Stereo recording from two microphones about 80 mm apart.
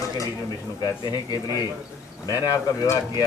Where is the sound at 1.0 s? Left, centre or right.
Left.